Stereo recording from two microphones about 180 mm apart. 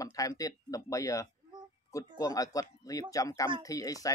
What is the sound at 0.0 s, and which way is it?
Speech, 20° left (ahead or behind).